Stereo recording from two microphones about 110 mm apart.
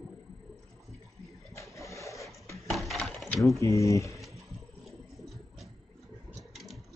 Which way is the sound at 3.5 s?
30° left (ahead or behind).